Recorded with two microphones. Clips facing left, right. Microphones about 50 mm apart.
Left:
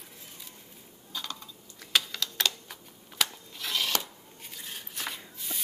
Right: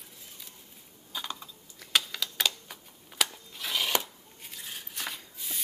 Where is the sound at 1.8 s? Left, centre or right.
Centre.